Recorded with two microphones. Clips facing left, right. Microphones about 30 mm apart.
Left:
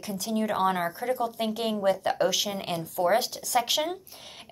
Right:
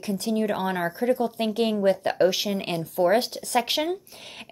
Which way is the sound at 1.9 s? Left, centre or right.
Right.